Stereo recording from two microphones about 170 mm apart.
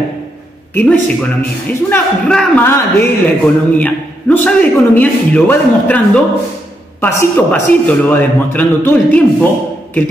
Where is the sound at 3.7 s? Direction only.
10° left (ahead or behind).